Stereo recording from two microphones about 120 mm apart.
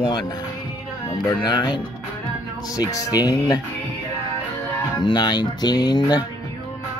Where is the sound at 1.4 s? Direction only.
35° left (ahead or behind).